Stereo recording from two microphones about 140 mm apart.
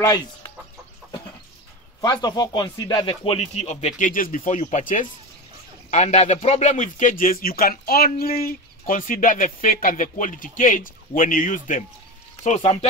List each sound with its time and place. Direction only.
2.0 s speech: 30° left (ahead or behind); by 4.1 s 55° left (ahead or behind)
4.1 s speech: 75° left (ahead or behind)
4.5 s speech: 60° left (ahead or behind)
12.4 s speech: 55° left (ahead or behind)